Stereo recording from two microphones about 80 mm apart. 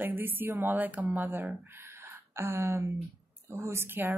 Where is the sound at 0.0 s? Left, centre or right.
Right.